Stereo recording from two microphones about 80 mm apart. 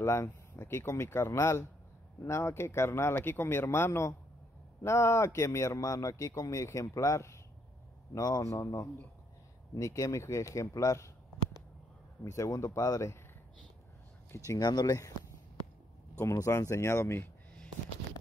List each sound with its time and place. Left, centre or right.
0.0 s a man's voice: left
12.3 s a man's voice: left
14.3 s speech: left
14.6 s speech: left
16.2 s a man's voice: left